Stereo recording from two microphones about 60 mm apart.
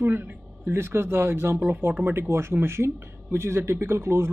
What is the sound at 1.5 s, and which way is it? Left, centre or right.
Speech, right.